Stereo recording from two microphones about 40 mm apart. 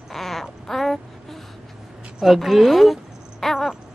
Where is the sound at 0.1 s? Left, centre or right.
Centre.